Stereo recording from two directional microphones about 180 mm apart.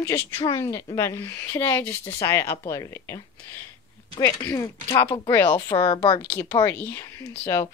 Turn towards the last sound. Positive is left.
turn(degrees=15)  # may be behind; listen again after turning